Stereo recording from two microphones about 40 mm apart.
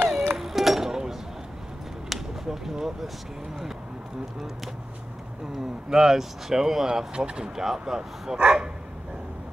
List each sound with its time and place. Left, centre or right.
0.1 s music: centre
2.0 s a sound: centre
5.9 s speech: centre